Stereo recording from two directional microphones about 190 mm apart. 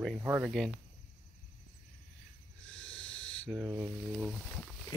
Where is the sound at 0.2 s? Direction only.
10° right (ahead or behind).